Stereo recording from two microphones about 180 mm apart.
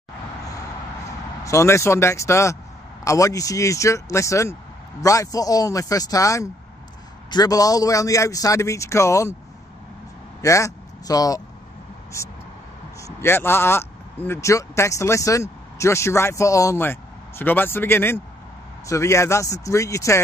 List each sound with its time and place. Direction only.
1.4 s a man's voice: 15° left (ahead or behind)
10.4 s a man's voice: 15° left (ahead or behind)